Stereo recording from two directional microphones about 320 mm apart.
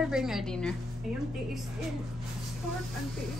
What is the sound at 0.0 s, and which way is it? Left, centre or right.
Speech, centre.